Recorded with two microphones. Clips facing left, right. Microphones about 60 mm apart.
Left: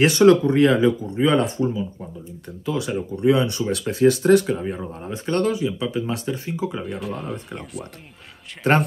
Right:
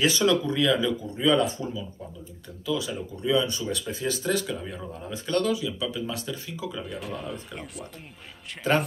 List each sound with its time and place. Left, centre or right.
0.0 s speech: left
7.0 s speech: centre